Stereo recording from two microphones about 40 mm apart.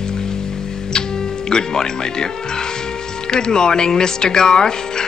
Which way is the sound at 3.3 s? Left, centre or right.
Centre.